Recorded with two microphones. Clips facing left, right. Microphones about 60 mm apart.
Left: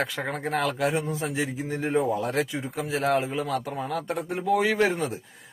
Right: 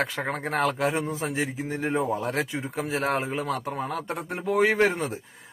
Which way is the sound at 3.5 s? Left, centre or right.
Right.